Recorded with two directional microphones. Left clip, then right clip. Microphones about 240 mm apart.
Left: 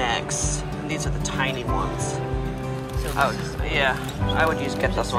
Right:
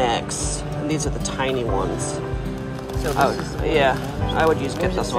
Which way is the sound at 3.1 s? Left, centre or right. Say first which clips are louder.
Right 2 dB; right.